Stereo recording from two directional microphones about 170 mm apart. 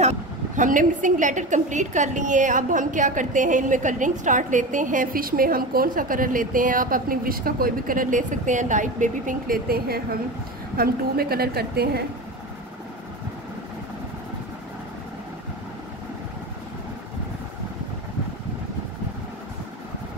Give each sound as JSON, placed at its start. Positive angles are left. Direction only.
{"t": 0.0, "sound": "a woman's voice", "side_deg": -45}